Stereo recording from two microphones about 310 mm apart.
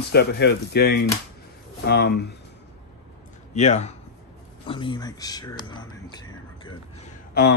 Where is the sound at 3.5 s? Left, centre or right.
Left.